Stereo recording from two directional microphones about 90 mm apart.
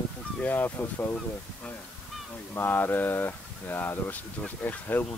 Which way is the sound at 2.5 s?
25° left (ahead or behind).